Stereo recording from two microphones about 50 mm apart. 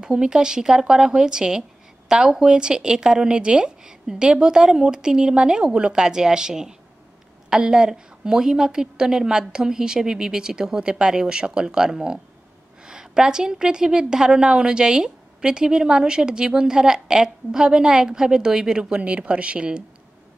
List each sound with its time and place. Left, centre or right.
0.0 s a woman's voice: centre